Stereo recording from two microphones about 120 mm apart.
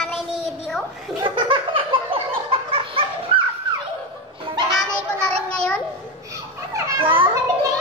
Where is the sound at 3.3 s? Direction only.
45° right (ahead or behind).